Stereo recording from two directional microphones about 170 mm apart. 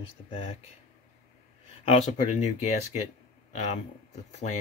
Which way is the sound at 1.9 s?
40° left (ahead or behind).